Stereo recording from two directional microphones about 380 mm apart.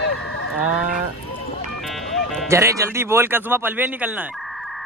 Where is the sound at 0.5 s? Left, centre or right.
Centre.